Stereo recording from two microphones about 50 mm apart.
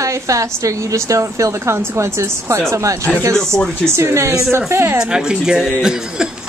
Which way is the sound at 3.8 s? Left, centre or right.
Right.